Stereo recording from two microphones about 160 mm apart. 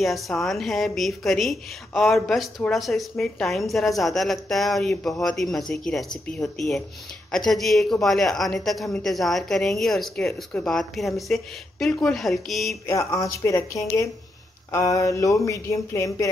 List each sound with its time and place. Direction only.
0.0 s a woman's voice: centre (ahead or behind)
12.8 s speech: 20° left (ahead or behind)